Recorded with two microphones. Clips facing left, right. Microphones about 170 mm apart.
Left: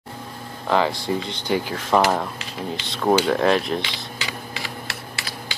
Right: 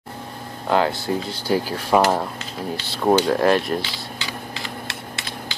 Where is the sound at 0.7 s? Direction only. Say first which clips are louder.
Right 1 dB; 5° right (ahead or behind).